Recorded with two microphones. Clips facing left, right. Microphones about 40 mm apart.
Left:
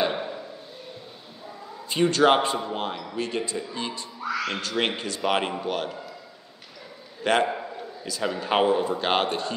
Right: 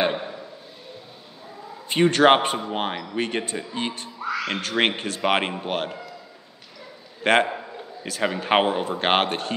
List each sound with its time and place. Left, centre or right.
1.9 s speech: right
4.2 s speech: right
4.6 s speech: right
7.2 s a man's voice: right